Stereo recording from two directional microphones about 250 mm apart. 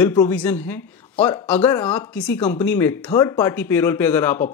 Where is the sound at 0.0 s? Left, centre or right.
Centre.